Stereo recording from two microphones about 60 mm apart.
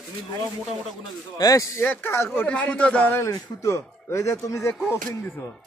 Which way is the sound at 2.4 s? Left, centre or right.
Left.